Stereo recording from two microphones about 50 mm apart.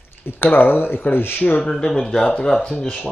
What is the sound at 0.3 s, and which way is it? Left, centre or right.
Speech, left.